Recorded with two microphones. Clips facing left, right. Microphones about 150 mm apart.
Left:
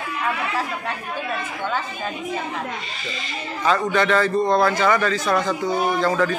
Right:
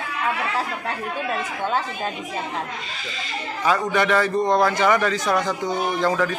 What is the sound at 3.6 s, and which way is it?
A man's voice, 10° right (ahead or behind).